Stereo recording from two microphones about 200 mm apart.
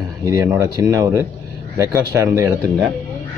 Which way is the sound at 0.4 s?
15° right (ahead or behind).